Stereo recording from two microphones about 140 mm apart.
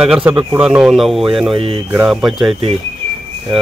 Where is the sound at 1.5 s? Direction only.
40° right (ahead or behind).